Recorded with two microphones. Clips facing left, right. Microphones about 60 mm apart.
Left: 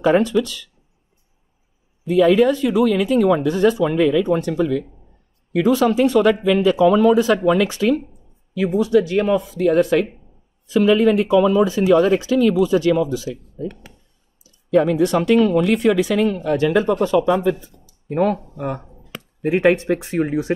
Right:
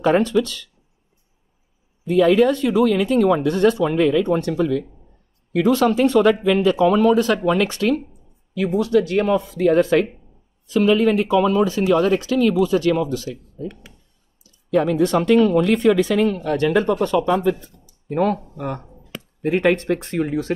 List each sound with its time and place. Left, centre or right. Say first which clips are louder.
0.0 s speech: left 1 dB; centre
2.0 s speech: left 1 dB; centre
6.6 s speech: left 3 dB; centre
14.7 s speech: left 2 dB; centre
18.9 s chop: even; centre
19.5 s speech: left 2 dB; centre